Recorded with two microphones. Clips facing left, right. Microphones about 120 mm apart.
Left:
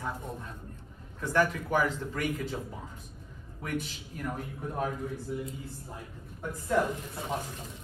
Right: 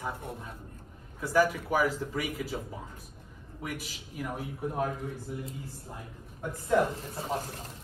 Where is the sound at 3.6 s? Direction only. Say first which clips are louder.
Left 4 dB; 5° right (ahead or behind).